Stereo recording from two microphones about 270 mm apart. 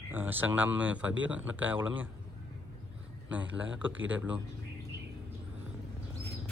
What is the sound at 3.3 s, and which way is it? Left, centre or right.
Speech, centre.